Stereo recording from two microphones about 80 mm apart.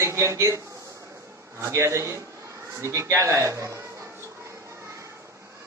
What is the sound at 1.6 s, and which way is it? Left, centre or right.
A man's voice, right.